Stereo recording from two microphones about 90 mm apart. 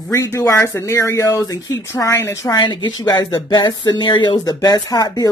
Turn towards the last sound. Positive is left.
turn(degrees=45)  # may be behind; listen again after turning